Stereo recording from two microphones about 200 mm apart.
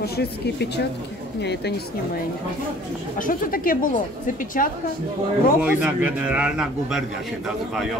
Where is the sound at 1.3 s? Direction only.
55° left (ahead or behind).